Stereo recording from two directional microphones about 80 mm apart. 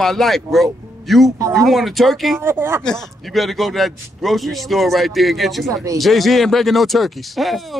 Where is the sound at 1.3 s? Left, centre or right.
Right.